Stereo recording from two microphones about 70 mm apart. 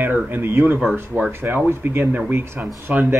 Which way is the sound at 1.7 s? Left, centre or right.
Right.